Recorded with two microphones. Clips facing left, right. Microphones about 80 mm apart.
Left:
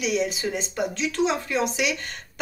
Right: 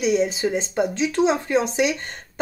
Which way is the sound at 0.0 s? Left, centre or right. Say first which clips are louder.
Right 5 dB; right.